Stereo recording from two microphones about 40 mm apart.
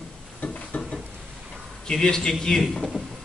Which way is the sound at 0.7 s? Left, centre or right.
Left.